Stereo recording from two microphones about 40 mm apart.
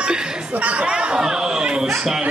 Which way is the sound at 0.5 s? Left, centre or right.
Right.